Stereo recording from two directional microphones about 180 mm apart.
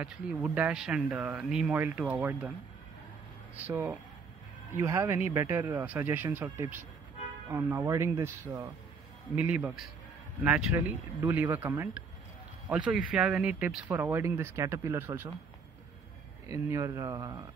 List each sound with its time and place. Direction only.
0.0 s speech: 5° right (ahead or behind)
3.6 s speech: 10° right (ahead or behind)
16.4 s speech: 15° right (ahead or behind)